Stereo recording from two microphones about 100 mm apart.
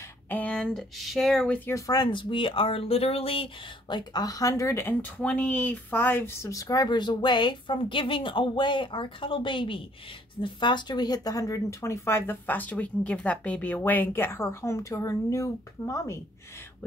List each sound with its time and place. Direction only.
0.3 s speech: 15° left (ahead or behind)
1.7 s speech: 35° left (ahead or behind); by 3.4 s 70° left (ahead or behind)
3.9 s speech: 40° left (ahead or behind)